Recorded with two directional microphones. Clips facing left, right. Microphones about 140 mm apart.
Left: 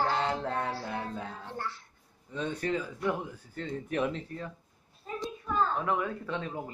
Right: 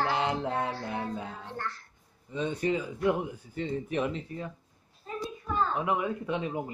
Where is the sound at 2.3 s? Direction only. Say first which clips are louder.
Right 3 dB; 5° right (ahead or behind).